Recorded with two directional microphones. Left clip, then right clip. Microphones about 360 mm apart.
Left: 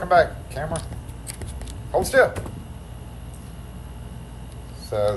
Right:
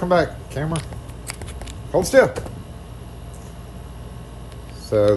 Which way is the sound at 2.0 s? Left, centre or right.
Centre.